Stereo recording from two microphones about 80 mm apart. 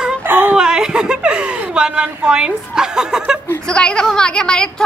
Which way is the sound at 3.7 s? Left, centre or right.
Centre.